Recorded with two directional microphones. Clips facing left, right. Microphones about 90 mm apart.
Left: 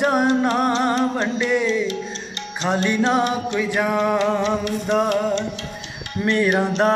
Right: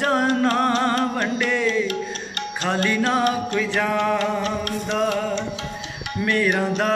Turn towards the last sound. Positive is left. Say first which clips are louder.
# left 3 dB
turn(degrees=25)  # may be behind; listen again after turning